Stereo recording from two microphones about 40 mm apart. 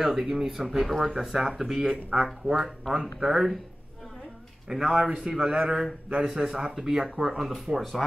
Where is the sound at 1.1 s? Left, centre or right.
Centre.